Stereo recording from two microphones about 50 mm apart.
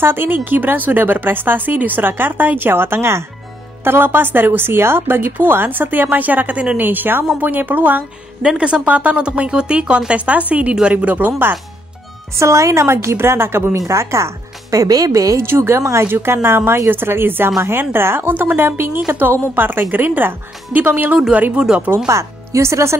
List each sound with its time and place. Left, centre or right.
0.0 s a woman's voice: right
3.8 s a woman's voice: right
6.8 s speech: right
8.4 s speech: right
11.1 s speech: right
12.4 s a woman's voice: right
13.8 s speech: right
15.4 s a woman's voice: right
15.8 s speech: right
16.1 s a woman's voice: right
21.9 s speech: right